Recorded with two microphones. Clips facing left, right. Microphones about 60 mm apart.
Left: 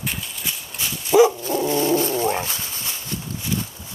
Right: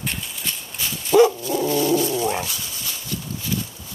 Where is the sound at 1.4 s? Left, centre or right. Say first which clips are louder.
Even; left.